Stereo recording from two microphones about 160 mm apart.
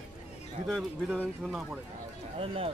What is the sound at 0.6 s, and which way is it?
A man's voice, 5° right (ahead or behind).